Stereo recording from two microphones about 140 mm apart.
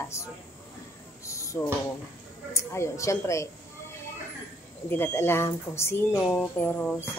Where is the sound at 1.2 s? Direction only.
20° left (ahead or behind).